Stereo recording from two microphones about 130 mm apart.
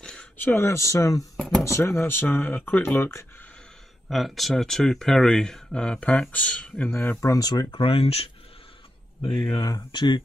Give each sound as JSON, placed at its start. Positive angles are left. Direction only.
{"t": 0.0, "sound": "speech", "side_deg": 5}
{"t": 1.3, "sound": "a sound", "side_deg": 0}
{"t": 1.6, "sound": "speech", "side_deg": 20}
{"t": 4.1, "sound": "speech", "side_deg": 0}
{"t": 7.8, "sound": "speech", "side_deg": 45}
{"t": 9.5, "sound": "speech", "side_deg": 30}